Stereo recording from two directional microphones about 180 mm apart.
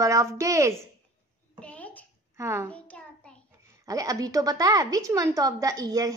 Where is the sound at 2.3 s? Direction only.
15° right (ahead or behind).